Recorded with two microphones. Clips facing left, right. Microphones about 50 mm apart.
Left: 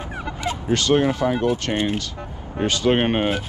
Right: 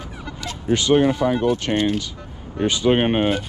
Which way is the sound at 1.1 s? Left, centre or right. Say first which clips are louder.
Right 1 dB; centre.